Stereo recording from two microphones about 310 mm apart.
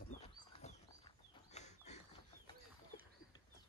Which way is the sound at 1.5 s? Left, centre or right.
Left.